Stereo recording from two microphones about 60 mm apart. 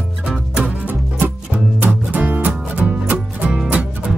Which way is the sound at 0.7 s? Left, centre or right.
Right.